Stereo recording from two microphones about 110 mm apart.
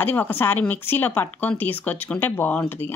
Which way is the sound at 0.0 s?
20° left (ahead or behind).